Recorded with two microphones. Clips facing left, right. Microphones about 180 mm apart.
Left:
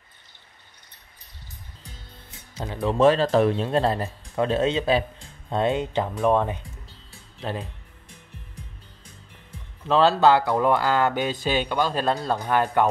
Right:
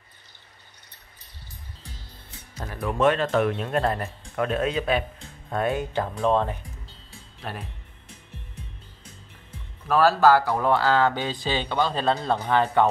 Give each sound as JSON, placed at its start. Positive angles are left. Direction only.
{"t": 2.5, "sound": "speech", "side_deg": 25}
{"t": 9.8, "sound": "speech", "side_deg": 20}